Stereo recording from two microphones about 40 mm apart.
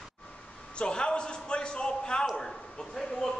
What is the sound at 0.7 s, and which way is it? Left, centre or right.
A man's voice, left.